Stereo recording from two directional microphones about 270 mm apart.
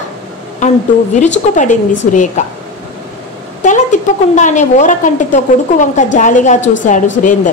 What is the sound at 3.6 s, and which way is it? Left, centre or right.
A woman's voice, left.